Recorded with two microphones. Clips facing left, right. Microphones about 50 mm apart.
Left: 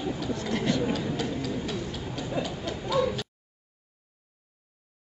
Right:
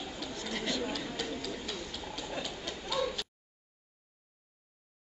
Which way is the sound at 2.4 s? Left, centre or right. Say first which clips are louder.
Left 8 dB; centre.